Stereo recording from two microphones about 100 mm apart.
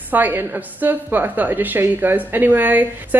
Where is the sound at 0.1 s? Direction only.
20° right (ahead or behind).